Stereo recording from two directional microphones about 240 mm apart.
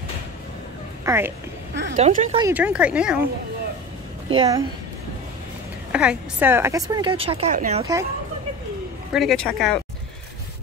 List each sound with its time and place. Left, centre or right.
1.0 s a woman's voice: centre
2.0 s a woman's voice: right
2.3 s speech: centre
4.4 s a woman's voice: centre
5.9 s a woman's voice: centre; by 7.8 s right
7.8 s a woman's voice: centre
9.1 s speech: centre